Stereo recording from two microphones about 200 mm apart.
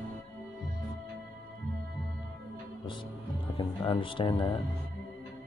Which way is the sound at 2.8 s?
25° left (ahead or behind).